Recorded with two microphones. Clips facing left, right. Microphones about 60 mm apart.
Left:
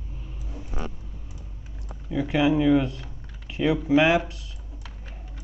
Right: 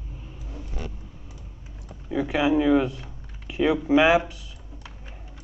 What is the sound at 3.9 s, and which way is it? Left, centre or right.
Speech, right.